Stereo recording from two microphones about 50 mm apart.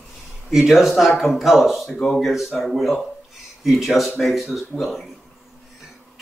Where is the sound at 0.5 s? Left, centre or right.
Centre.